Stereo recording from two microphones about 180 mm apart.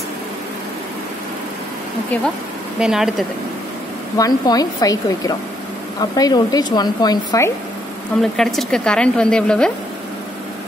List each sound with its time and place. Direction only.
2.8 s a woman's voice: centre (ahead or behind)
4.2 s speech: 20° left (ahead or behind)
8.2 s a woman's voice: centre (ahead or behind)